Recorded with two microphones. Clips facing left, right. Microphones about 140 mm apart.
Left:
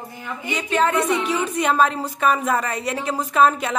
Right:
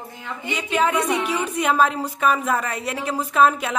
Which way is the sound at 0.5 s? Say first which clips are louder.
Left 1 dB; 10° right (ahead or behind).